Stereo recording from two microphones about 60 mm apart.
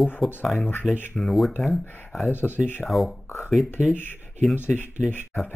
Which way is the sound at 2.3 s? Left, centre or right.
Left.